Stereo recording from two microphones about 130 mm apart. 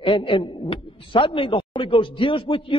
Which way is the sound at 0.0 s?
40° left (ahead or behind).